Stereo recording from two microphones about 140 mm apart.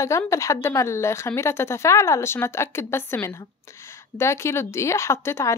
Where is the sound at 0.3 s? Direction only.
20° left (ahead or behind).